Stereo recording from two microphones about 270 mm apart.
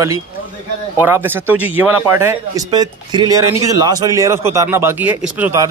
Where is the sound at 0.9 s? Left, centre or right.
Centre.